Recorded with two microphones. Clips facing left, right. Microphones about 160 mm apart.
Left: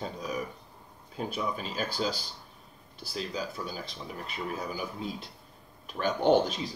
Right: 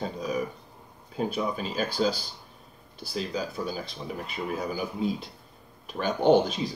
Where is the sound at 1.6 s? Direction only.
5° right (ahead or behind).